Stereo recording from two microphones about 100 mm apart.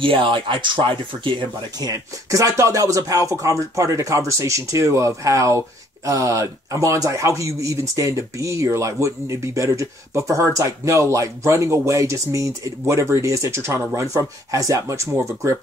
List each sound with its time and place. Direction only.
0.0 s speech: 60° right (ahead or behind)
1.8 s speech: 35° right (ahead or behind)